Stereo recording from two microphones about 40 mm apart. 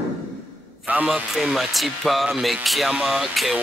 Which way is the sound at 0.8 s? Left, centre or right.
Right.